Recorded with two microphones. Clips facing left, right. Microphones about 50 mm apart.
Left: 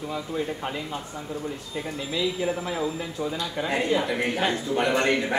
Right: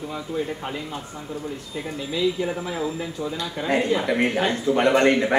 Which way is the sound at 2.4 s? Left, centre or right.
Centre.